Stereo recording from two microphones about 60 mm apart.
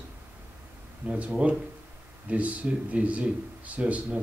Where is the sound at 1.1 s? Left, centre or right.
Right.